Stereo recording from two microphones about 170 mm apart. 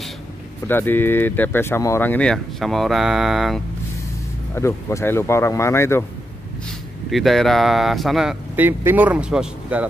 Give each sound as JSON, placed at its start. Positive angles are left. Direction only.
{"t": 0.7, "sound": "speech", "side_deg": 10}
{"t": 4.6, "sound": "speech", "side_deg": 15}
{"t": 7.1, "sound": "speech", "side_deg": 0}